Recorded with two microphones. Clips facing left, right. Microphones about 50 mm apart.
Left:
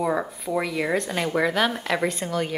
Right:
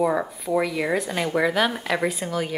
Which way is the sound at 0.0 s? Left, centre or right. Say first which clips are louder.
Right 2 dB; centre.